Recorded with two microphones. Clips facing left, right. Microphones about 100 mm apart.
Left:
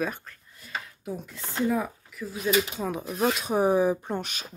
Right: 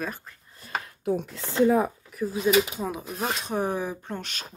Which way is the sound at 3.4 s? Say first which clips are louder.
Left 8 dB; 10° left (ahead or behind).